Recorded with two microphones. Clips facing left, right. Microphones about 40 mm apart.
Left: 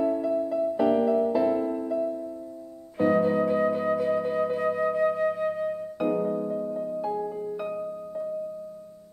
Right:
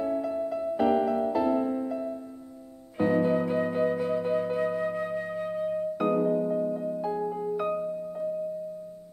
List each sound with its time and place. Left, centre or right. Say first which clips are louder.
0.6 s music: even; centre
3.0 s music: left 2 dB; centre
3.4 s flute: left 2 dB; centre
6.0 s music: even; centre
8.2 s music: left 1 dB; right